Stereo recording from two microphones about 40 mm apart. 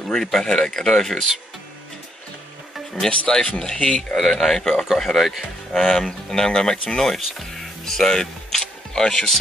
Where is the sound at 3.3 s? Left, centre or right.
Centre.